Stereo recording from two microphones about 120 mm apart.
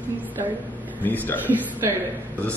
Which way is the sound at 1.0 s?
15° left (ahead or behind).